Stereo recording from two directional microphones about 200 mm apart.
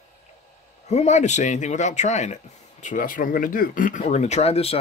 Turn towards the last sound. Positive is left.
turn(degrees=30)  # may be behind; listen again after turning